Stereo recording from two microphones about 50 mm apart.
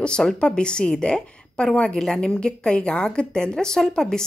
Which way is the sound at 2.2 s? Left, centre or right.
Centre.